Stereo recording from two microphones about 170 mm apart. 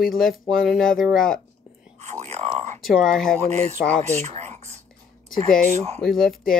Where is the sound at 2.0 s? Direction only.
45° right (ahead or behind).